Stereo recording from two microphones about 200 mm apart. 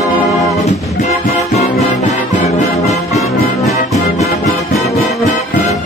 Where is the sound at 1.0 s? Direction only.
35° left (ahead or behind).